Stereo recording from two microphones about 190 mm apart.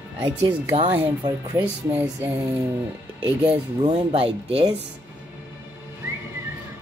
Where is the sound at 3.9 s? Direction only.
30° right (ahead or behind).